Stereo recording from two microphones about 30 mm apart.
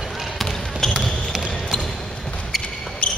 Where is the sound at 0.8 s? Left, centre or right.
Centre.